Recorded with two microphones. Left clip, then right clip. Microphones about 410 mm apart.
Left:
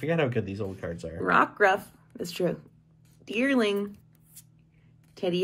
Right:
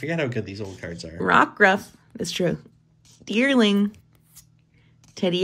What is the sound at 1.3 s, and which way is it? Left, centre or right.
Speech, centre.